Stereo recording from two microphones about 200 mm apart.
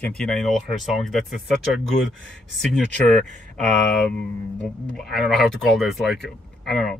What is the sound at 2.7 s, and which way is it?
Speech, 5° left (ahead or behind).